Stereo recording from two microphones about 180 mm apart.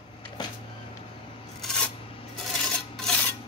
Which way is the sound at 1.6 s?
5° left (ahead or behind).